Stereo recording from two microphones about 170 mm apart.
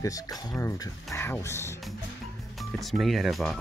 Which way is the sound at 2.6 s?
Centre (ahead or behind).